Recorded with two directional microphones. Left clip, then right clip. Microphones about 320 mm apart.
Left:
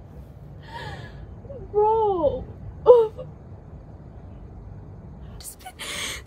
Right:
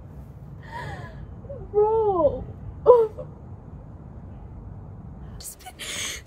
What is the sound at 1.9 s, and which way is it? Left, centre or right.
Babbling, centre.